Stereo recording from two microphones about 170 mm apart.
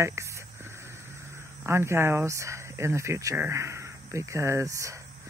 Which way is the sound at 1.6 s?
15° right (ahead or behind).